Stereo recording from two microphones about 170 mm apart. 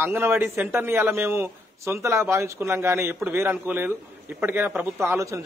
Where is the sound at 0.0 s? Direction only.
15° right (ahead or behind).